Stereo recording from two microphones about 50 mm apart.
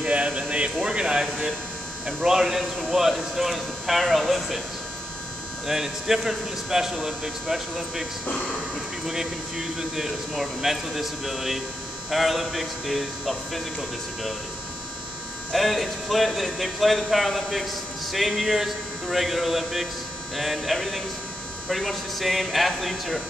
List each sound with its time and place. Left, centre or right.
0.0 s a sound: right
0.7 s speech: centre
2.2 s speech: centre
5.7 s speech: centre
15.5 s speech: centre